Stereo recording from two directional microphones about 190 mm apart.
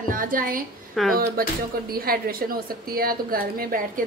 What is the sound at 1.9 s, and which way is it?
A woman's voice, 50° right (ahead or behind).